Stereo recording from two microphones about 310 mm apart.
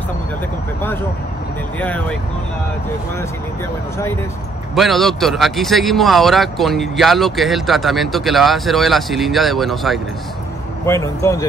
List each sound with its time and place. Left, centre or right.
1.8 s speech: centre
4.7 s speech: centre